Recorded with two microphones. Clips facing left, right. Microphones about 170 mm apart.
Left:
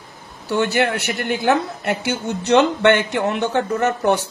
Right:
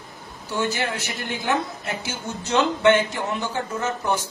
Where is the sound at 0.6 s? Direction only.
65° left (ahead or behind).